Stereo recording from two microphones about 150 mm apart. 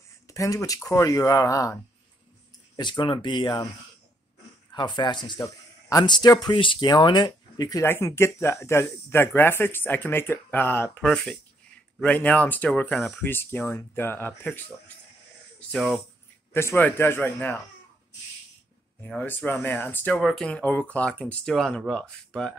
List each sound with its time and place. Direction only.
0.3 s a man's voice: 20° left (ahead or behind)
4.7 s a man's voice: 30° left (ahead or behind); by 13.2 s centre (ahead or behind)
13.2 s speech: 15° left (ahead or behind)
15.7 s speech: centre (ahead or behind)
16.5 s speech: 15° left (ahead or behind)
19.0 s speech: 10° left (ahead or behind)
20.2 s speech: centre (ahead or behind)